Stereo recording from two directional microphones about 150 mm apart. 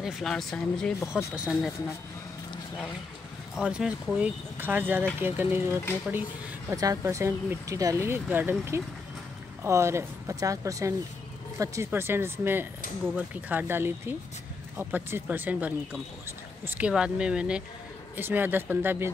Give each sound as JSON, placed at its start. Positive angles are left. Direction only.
{"t": 0.0, "sound": "speech", "side_deg": 0}
{"t": 3.5, "sound": "speech", "side_deg": -5}
{"t": 6.7, "sound": "speech", "side_deg": -25}